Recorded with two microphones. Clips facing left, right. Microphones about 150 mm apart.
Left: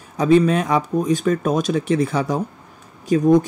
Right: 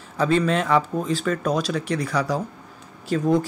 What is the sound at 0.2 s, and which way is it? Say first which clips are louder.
Speech: left 5 dB; 15° left (ahead or behind).